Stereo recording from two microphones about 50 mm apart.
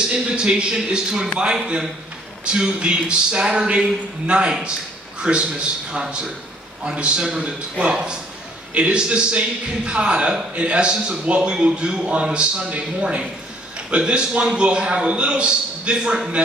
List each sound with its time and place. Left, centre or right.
0.1 s a man's voice: centre